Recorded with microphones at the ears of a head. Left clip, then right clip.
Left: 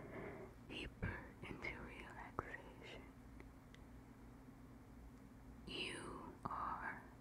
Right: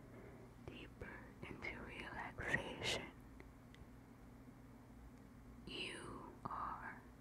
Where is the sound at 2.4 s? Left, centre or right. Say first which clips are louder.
Right 13 dB; right.